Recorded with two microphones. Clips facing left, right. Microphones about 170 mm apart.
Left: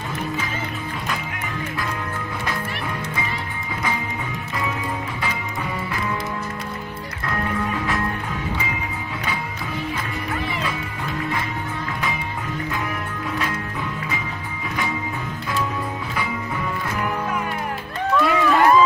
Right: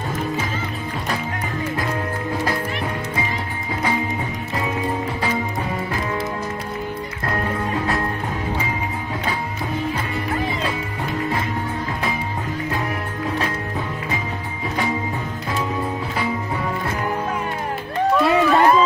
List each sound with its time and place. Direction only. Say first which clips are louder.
18.1 s run: right 2 dB; 35° right (ahead or behind)